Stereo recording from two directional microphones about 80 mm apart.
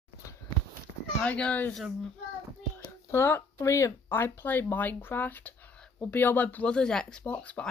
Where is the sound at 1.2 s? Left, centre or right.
Centre.